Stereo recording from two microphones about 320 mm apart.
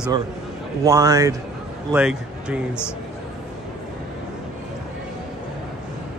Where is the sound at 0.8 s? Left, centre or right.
Centre.